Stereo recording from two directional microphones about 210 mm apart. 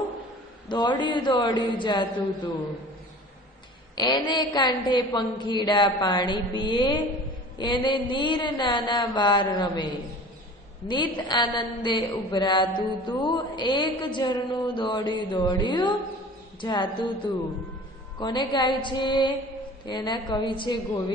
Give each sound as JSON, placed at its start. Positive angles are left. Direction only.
{"t": 0.7, "sound": "a woman's voice", "side_deg": 20}
{"t": 3.9, "sound": "a woman's voice", "side_deg": 20}
{"t": 10.9, "sound": "a woman's voice", "side_deg": 20}
{"t": 18.2, "sound": "a woman's voice", "side_deg": 20}